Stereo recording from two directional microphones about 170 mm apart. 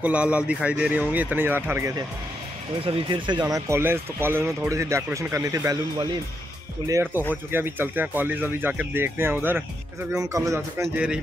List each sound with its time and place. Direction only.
0.0 s speech: 5° right (ahead or behind)
2.8 s a man's voice: 30° right (ahead or behind)